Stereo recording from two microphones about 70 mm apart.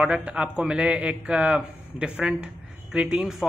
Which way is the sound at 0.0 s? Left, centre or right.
Centre.